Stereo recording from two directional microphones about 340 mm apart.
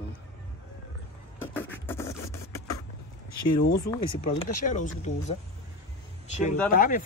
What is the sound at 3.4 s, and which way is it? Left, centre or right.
Speech, left.